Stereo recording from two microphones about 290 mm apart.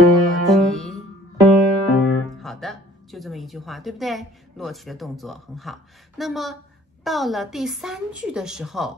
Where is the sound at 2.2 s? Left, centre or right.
Centre.